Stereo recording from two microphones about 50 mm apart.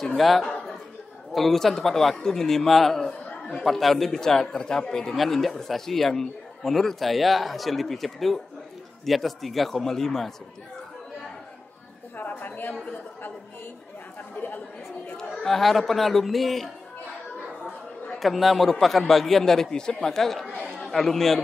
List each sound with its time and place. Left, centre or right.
0.0 s a man's voice: centre
5.1 s a man's voice: centre
12.2 s a woman's voice: left
14.3 s chatter: left
15.1 s a man's voice: centre
18.2 s a man's voice: centre